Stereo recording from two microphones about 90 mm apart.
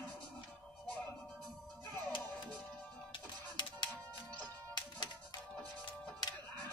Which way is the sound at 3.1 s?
60° left (ahead or behind).